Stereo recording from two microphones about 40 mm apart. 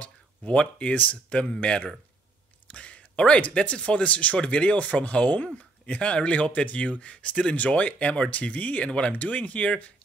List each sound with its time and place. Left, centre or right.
0.0 s speech: left
1.3 s speech: left
2.7 s a sound: left
3.5 s speech: left